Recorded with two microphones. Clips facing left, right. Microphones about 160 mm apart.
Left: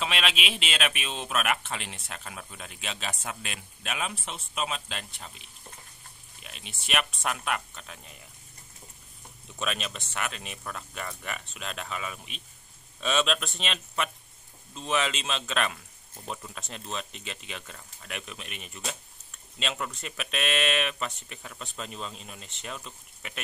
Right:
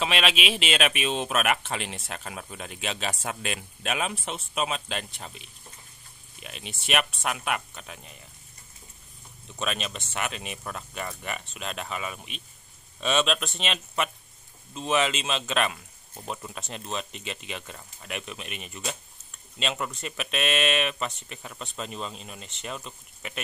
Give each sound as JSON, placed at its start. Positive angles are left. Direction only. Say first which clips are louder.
{"t": 0.0, "sound": "speech", "louder": "right 4 dB", "side_deg": -65}
{"t": 2.0, "sound": "speech", "louder": "right 4 dB", "side_deg": -45}
{"t": 3.1, "sound": "speech", "louder": "right 4 dB", "side_deg": -30}
{"t": 3.4, "sound": "speech", "louder": "right 6 dB", "side_deg": -55}
{"t": 7.0, "sound": "speech", "louder": "left 2 dB", "side_deg": -5}
{"t": 9.6, "sound": "speech", "louder": "right 2 dB", "side_deg": 0}
{"t": 10.1, "sound": "speech", "louder": "right 3 dB", "side_deg": -15}